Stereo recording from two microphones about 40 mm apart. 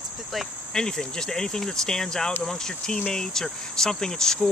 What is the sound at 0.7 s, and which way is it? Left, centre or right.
Speech, centre.